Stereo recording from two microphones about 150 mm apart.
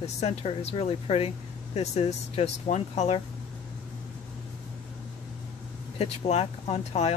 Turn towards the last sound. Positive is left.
turn(degrees=45)  # may be behind; listen again after turning